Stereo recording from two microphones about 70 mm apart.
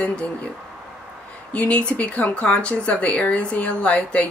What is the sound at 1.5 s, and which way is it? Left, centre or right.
Speech, centre.